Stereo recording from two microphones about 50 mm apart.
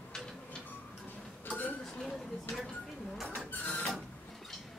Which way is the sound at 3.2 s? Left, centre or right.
Left.